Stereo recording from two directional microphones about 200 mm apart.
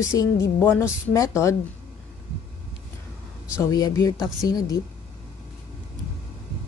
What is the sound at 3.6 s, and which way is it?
Speech, 15° left (ahead or behind).